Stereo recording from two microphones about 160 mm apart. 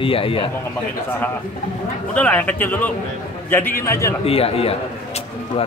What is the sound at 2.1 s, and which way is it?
A man's voice, 10° left (ahead or behind).